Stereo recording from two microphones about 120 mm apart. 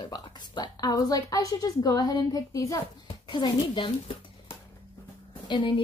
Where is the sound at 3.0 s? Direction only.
45° left (ahead or behind).